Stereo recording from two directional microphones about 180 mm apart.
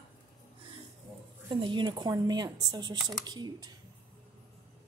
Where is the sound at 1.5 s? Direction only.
25° right (ahead or behind).